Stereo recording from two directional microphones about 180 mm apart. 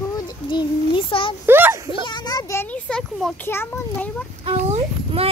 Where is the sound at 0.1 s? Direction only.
25° left (ahead or behind).